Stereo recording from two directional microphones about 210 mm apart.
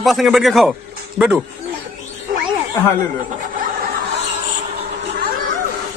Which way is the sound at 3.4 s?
40° right (ahead or behind).